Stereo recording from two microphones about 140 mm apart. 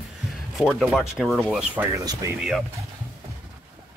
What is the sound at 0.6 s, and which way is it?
Speech, centre (ahead or behind).